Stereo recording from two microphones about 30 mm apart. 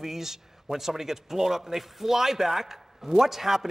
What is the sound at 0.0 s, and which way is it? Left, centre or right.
Speech, centre.